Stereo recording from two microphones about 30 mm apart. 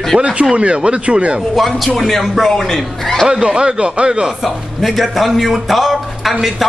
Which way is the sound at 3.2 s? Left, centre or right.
Right.